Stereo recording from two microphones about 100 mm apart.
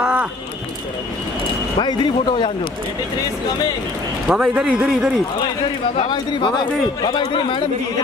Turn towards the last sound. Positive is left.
turn(degrees=50)  # may be behind; listen again after turning